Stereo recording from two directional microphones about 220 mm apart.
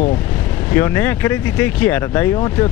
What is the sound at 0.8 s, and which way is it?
Speech, 10° left (ahead or behind).